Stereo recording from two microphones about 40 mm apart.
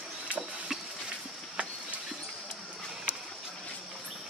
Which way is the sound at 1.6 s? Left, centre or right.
Right.